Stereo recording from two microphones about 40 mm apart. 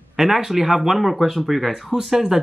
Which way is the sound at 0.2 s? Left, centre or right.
Centre.